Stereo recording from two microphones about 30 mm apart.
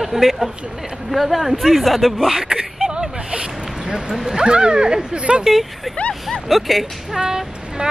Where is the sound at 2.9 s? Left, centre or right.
Right.